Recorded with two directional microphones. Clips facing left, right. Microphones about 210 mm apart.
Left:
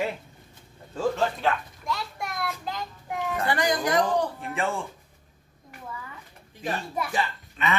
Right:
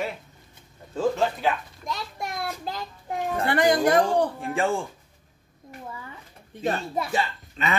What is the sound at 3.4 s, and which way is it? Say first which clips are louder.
Speech: right 6 dB; 55° right (ahead or behind).